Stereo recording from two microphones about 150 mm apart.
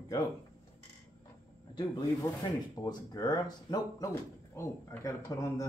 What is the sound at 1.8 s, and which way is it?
Speech, 25° left (ahead or behind).